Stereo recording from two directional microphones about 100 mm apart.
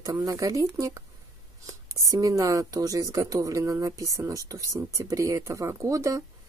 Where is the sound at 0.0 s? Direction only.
35° right (ahead or behind).